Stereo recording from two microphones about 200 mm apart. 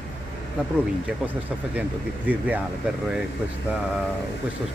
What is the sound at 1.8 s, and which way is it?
Speech, 10° right (ahead or behind).